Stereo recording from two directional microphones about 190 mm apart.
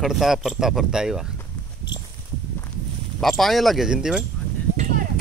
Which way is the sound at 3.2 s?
Centre (ahead or behind).